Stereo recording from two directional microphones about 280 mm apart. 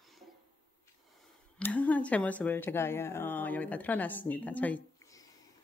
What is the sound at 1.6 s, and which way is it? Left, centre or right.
Speech, centre.